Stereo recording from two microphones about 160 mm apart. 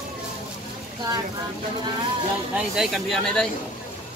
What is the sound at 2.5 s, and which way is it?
Speech, centre (ahead or behind).